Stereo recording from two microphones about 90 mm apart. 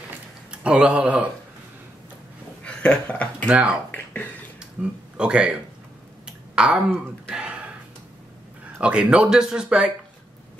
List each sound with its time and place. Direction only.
0.5 s speech: 10° right (ahead or behind)
2.6 s speech: 10° left (ahead or behind)
3.4 s speech: 15° right (ahead or behind)
3.9 s speech: 20° left (ahead or behind)
5.1 s speech: 10° right (ahead or behind)
6.2 s a sound: 10° right (ahead or behind)
8.7 s speech: 10° right (ahead or behind)